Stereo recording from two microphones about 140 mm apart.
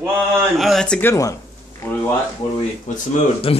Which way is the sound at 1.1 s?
20° left (ahead or behind).